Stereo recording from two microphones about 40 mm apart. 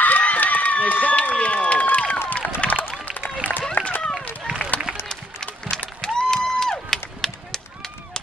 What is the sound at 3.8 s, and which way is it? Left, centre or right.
Run, left.